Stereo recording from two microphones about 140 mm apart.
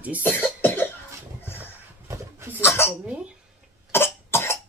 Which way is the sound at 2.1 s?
20° right (ahead or behind).